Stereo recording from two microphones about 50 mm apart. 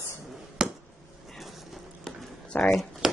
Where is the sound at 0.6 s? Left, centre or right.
Centre.